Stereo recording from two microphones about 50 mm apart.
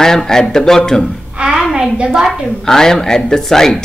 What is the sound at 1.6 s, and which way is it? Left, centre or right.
Speech, centre.